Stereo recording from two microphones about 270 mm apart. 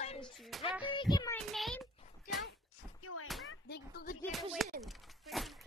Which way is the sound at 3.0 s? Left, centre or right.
Left.